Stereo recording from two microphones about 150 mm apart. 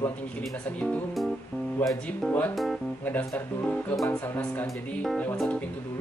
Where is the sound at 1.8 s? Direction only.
10° left (ahead or behind).